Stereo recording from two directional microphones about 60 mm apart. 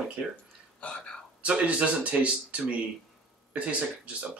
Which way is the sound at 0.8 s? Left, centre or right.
Left.